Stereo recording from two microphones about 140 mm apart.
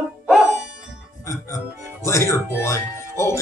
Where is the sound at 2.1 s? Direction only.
20° left (ahead or behind).